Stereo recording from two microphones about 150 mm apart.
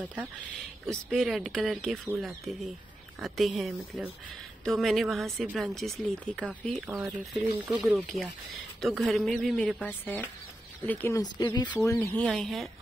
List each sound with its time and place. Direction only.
0.8 s speech: centre (ahead or behind)
11.3 s speech: 30° left (ahead or behind)
11.7 s speech: 20° left (ahead or behind)
12.2 s speech: 5° left (ahead or behind)